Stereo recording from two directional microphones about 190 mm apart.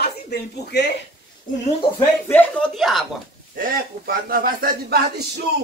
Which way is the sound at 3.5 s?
50° right (ahead or behind).